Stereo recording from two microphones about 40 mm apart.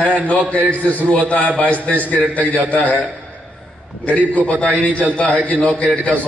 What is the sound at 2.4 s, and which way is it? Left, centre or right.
Speech, right.